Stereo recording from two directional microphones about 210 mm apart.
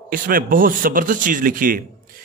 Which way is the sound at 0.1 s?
40° right (ahead or behind).